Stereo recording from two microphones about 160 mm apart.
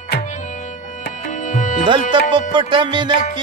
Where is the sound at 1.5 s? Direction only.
50° left (ahead or behind).